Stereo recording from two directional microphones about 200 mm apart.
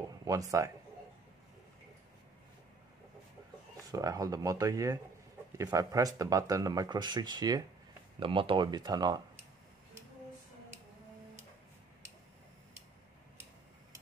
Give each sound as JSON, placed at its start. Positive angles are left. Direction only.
{"t": 0.2, "sound": "a man's voice", "side_deg": -15}
{"t": 3.9, "sound": "speech", "side_deg": -15}